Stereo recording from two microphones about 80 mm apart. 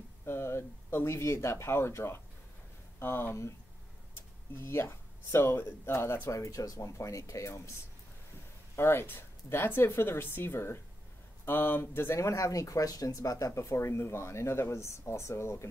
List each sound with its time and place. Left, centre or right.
0.2 s speech: left
4.6 s speech: left
8.7 s speech: left